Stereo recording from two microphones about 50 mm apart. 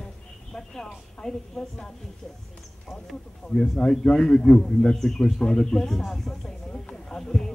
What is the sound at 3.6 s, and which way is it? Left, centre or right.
A man's voice, centre.